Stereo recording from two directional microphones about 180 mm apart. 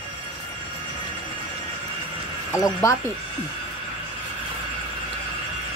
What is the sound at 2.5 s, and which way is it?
Speech, 20° left (ahead or behind).